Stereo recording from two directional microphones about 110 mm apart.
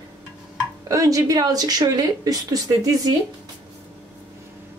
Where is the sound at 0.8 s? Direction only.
30° right (ahead or behind).